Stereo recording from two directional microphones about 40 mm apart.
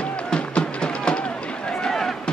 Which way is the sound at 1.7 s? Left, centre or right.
Centre.